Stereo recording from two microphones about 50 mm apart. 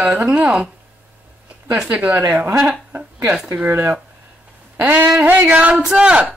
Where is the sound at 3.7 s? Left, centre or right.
Right.